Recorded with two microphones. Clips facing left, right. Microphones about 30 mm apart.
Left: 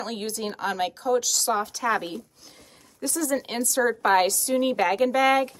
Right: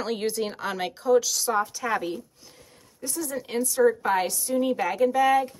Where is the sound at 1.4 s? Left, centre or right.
Left.